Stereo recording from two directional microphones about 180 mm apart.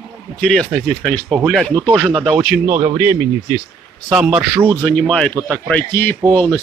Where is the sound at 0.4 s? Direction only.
Centre (ahead or behind).